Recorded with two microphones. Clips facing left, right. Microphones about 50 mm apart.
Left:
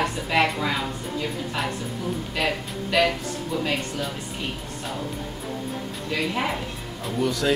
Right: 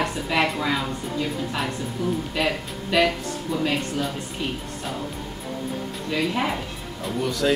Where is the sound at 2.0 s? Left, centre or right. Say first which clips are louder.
Right 2 dB; centre.